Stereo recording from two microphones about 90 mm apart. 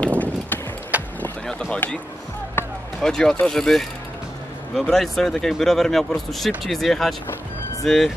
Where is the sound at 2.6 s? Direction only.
20° left (ahead or behind).